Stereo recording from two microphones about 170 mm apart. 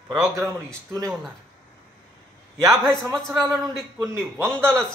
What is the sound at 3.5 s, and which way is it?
Speech, centre (ahead or behind).